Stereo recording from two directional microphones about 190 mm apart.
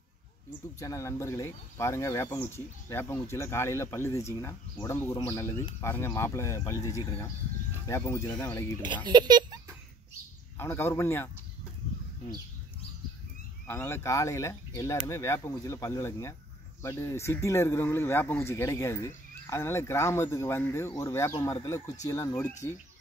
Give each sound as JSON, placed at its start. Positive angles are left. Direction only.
{"t": 0.7, "sound": "speech", "side_deg": 15}
{"t": 8.8, "sound": "a sound", "side_deg": -25}
{"t": 10.6, "sound": "speech", "side_deg": 15}
{"t": 13.7, "sound": "speech", "side_deg": 15}